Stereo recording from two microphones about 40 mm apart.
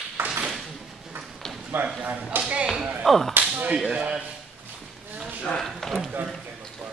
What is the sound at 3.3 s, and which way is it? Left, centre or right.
Whip, right.